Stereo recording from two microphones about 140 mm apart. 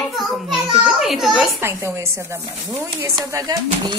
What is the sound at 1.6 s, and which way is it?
Speech, 20° right (ahead or behind).